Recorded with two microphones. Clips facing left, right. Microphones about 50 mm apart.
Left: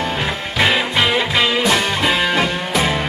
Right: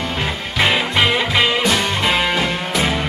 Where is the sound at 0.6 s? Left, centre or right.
Centre.